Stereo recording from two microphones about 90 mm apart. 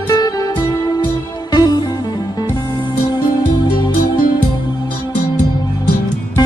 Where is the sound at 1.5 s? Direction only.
50° left (ahead or behind).